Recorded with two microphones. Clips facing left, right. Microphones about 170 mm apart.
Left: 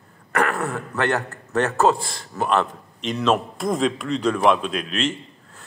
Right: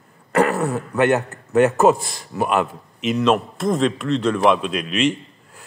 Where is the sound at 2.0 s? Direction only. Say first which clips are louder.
Left 1 dB; 60° left (ahead or behind).